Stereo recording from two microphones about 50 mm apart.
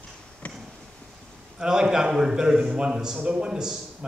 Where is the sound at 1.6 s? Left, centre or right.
Centre.